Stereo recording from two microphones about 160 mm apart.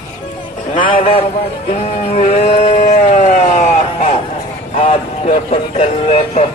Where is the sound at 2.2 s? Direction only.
45° left (ahead or behind).